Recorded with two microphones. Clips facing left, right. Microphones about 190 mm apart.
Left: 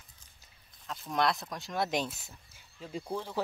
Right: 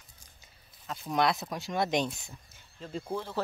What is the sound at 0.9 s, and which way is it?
Speech, centre (ahead or behind).